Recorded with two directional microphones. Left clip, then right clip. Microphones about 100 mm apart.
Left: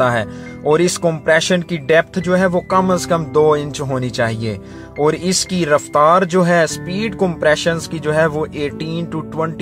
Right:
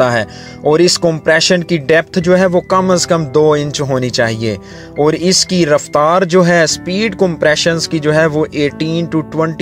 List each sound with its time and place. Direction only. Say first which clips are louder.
0.0 s speech: right 3 dB; 35° right (ahead or behind)